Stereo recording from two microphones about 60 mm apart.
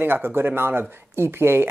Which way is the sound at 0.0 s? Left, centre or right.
Right.